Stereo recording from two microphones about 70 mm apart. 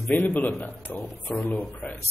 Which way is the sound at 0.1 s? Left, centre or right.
Left.